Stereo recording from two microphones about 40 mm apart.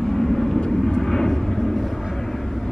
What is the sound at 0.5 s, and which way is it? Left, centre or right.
Vehicle, centre.